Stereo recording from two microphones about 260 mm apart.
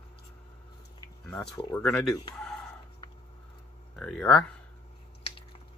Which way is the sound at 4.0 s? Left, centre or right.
Centre.